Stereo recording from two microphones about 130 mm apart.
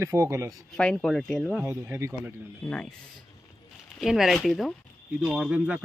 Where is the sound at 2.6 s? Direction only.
5° left (ahead or behind).